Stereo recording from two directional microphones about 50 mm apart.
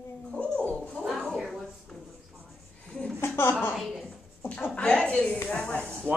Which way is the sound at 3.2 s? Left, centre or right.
Left.